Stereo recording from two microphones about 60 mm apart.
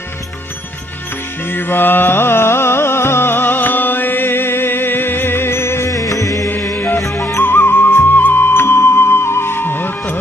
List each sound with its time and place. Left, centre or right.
1.5 s music: left
7.4 s music: left